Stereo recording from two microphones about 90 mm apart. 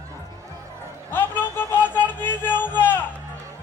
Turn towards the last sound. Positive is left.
turn(degrees=20)  # may be behind; listen again after turning